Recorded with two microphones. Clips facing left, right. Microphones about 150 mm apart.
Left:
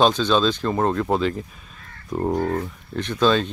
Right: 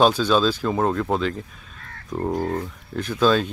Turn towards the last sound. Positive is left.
turn(degrees=-5)  # may be behind; listen again after turning